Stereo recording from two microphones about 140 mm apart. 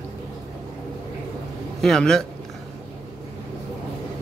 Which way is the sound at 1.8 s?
5° left (ahead or behind).